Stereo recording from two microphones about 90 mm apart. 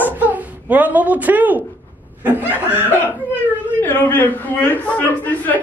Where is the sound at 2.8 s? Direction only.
25° left (ahead or behind).